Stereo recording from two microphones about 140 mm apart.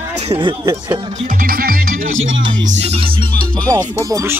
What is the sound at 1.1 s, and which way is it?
Music, 70° right (ahead or behind).